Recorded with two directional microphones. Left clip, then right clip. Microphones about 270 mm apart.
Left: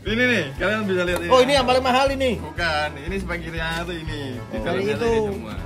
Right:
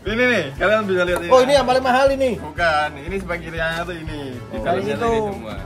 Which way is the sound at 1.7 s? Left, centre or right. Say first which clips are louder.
Right 2 dB; centre.